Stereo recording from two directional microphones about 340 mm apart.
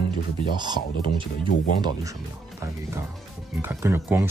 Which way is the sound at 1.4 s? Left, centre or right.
Left.